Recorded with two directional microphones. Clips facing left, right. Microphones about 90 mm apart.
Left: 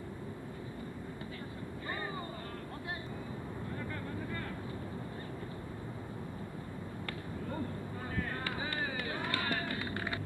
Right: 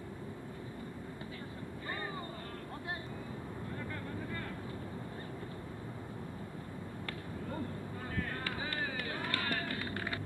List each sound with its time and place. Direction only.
8.2 s run: 20° left (ahead or behind)